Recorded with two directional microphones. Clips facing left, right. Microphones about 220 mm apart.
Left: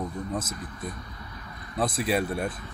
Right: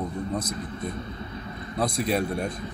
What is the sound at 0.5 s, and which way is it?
Speech, 25° right (ahead or behind).